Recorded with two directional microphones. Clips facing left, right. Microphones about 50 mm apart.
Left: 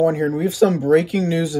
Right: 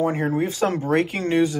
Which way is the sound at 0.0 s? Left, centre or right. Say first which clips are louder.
Left 4 dB; right.